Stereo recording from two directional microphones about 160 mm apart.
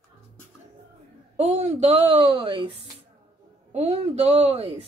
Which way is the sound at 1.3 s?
45° right (ahead or behind).